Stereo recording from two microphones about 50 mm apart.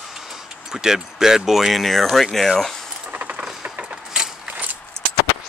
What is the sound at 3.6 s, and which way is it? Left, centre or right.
Keys jangling, right.